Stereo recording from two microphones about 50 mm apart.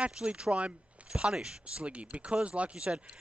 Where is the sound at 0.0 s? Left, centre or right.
Centre.